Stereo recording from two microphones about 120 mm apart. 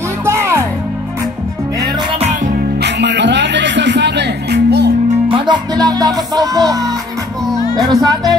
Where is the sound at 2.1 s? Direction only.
70° right (ahead or behind).